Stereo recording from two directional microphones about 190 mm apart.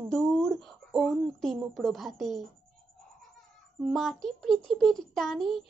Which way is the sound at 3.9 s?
Centre (ahead or behind).